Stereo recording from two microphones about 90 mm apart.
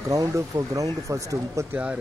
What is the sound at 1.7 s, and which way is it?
Speech, 15° right (ahead or behind).